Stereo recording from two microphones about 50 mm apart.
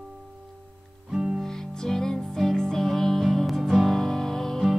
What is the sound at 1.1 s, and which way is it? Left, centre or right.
Music, centre.